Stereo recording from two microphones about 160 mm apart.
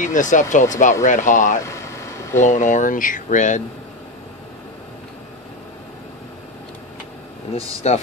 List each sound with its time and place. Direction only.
0.0 s speech: 50° left (ahead or behind)
1.6 s a sound: 20° left (ahead or behind)
2.3 s speech: 50° left (ahead or behind)
7.8 s speech: 45° left (ahead or behind)